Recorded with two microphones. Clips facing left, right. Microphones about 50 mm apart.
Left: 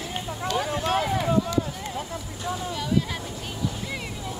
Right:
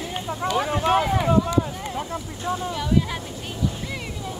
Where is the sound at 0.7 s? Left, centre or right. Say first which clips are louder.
Right 6 dB; right.